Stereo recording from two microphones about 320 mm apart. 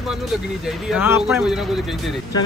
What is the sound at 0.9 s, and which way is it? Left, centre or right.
Speech, centre.